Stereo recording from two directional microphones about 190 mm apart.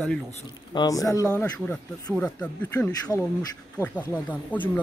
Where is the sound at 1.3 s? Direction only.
5° left (ahead or behind).